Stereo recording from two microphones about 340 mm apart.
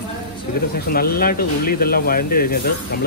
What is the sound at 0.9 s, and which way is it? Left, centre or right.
Speech, left.